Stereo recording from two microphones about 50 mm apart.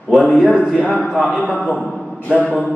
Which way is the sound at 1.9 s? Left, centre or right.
Centre.